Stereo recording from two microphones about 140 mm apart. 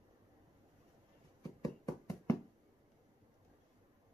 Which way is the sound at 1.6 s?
25° left (ahead or behind).